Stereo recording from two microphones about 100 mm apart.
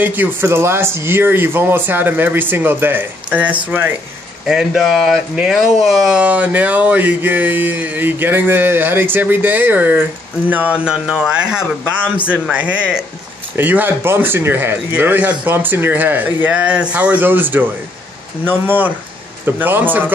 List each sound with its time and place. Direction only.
0.0 s speech: 20° right (ahead or behind)